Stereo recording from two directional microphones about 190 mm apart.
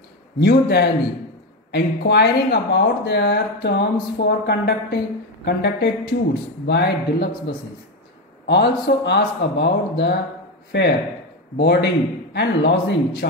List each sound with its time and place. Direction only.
0.4 s speech: 60° left (ahead or behind)
8.5 s speech: 65° left (ahead or behind)